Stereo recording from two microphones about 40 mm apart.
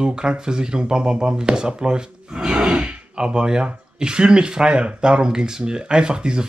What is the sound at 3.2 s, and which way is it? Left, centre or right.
Speech, right.